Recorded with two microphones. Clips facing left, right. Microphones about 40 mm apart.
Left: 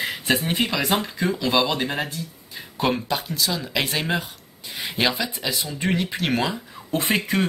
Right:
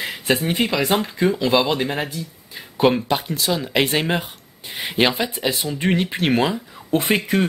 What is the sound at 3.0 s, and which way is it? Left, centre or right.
Speech, right.